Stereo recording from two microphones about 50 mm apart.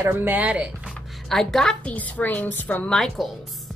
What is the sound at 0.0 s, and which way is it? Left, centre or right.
Speech, right.